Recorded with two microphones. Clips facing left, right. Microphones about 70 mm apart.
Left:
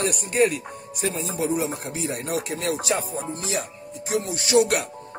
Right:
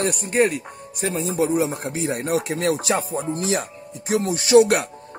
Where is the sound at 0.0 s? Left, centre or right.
Right.